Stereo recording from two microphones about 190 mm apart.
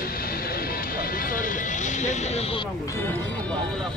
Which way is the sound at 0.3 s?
50° left (ahead or behind).